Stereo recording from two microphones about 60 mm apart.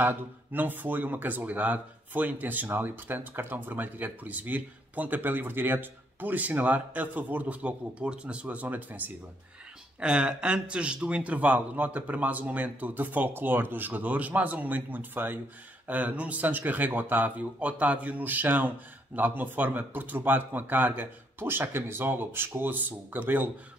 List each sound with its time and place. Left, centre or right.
0.0 s speech: right
9.9 s speech: centre